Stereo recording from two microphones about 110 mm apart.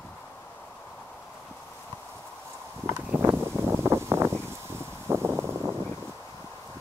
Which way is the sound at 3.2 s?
25° right (ahead or behind).